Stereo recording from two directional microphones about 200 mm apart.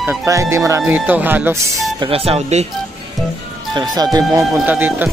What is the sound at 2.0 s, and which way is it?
Speech, 30° right (ahead or behind).